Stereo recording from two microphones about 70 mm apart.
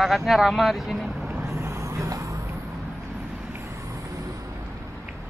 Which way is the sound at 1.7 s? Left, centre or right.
Right.